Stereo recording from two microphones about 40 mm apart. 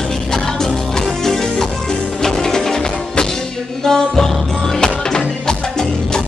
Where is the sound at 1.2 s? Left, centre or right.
Centre.